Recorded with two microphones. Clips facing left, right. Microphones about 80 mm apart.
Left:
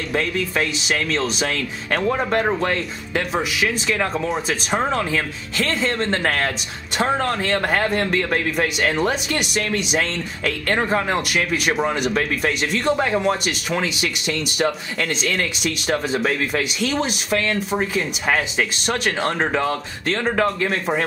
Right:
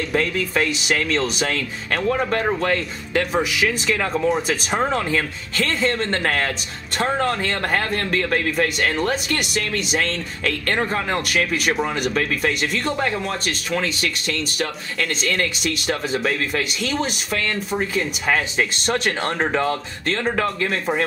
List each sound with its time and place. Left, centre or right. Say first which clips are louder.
0.1 s speech: left 1 dB; centre